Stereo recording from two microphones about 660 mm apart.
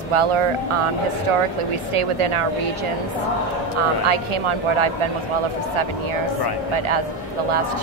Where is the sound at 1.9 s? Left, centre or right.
Right.